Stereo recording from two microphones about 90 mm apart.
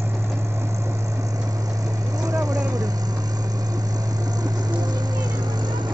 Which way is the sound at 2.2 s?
40° right (ahead or behind).